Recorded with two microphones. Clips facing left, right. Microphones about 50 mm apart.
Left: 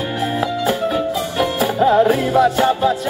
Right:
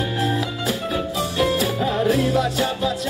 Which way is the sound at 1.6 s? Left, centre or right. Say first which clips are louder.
Left 7 dB; left.